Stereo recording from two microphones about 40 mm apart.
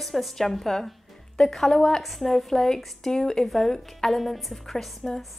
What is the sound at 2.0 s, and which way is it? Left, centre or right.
A woman's voice, centre.